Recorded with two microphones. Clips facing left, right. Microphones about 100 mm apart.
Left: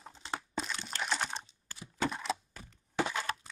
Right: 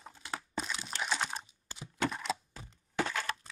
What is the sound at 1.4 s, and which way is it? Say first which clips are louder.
Computer keyboard: right 2 dB; 20° right (ahead or behind).